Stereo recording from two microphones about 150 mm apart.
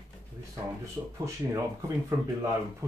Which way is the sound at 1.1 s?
20° right (ahead or behind).